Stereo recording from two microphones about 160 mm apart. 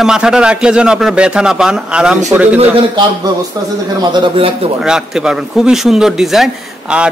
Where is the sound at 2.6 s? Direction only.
30° right (ahead or behind).